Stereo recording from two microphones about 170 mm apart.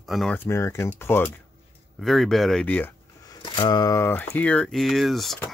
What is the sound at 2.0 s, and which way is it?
Speech, centre (ahead or behind).